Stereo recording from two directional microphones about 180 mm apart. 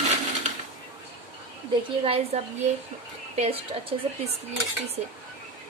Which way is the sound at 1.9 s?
30° right (ahead or behind).